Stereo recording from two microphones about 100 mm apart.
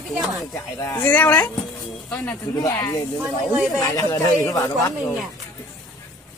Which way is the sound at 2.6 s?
40° left (ahead or behind).